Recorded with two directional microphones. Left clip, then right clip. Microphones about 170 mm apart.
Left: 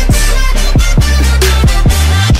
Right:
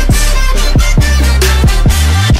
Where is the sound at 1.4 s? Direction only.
Centre (ahead or behind).